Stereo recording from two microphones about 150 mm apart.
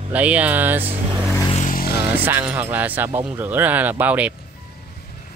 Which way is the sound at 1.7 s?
85° left.